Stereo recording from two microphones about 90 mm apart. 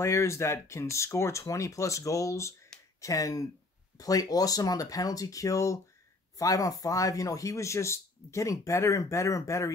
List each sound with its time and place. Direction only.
0.0 s speech: 35° left (ahead or behind)